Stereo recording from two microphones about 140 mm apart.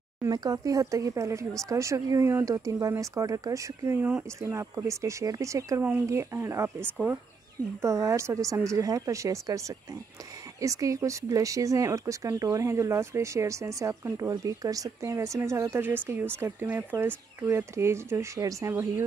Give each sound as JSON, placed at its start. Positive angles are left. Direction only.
{"t": 0.2, "sound": "speech", "side_deg": -25}